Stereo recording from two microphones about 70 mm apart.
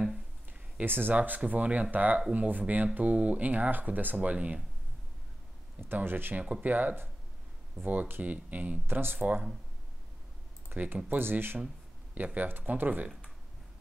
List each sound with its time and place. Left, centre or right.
0.5 s speech: right
5.8 s speech: right
10.7 s speech: right